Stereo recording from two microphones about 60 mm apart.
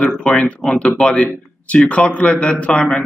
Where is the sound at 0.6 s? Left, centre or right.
Centre.